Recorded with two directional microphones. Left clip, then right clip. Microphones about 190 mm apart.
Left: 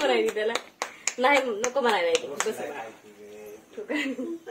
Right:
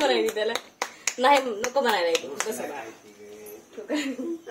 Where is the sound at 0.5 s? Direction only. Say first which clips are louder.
Even; 5° left (ahead or behind).